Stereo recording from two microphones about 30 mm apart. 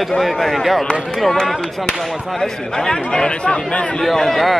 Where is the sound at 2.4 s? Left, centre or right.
Centre; by 3.9 s left.